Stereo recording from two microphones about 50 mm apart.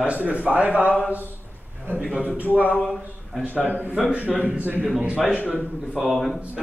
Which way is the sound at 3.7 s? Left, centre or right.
Right.